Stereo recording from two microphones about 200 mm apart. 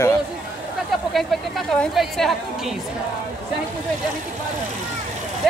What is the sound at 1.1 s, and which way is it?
A woman's voice, centre (ahead or behind).